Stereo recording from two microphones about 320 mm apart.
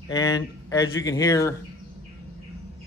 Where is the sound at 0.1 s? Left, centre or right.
Centre.